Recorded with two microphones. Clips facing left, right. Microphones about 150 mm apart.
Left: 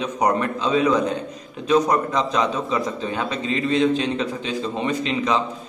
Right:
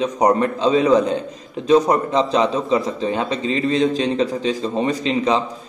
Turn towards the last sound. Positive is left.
turn(degrees=-35)  # may be behind; listen again after turning